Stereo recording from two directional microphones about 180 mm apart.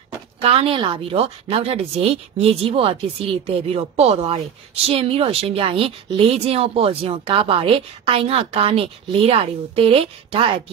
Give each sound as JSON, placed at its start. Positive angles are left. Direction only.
{"t": 0.4, "sound": "a woman's voice", "side_deg": -30}